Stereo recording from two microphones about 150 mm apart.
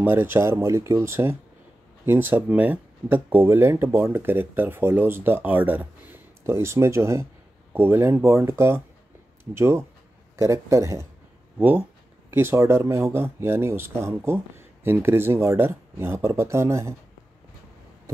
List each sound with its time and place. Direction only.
0.0 s speech: 15° right (ahead or behind)
12.3 s speech: 15° right (ahead or behind)